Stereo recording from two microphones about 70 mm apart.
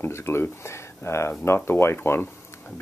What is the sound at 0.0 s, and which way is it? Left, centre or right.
Speech, left.